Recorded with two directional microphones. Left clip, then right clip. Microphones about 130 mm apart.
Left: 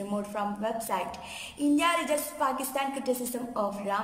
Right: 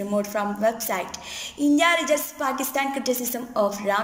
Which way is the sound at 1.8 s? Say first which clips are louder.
Right 7 dB; 10° left (ahead or behind).